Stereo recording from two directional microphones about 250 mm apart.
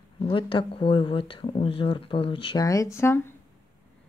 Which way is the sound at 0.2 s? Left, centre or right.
Left.